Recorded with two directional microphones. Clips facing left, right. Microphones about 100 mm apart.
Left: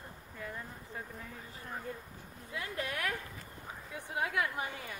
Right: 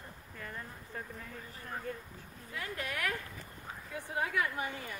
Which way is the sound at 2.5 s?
25° left (ahead or behind).